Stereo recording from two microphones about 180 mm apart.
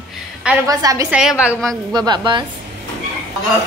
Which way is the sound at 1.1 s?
5° right (ahead or behind).